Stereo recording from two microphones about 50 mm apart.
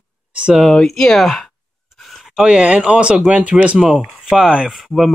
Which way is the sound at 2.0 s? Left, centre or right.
Centre.